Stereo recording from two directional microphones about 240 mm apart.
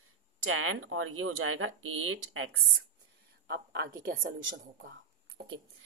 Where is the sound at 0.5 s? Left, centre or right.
Right.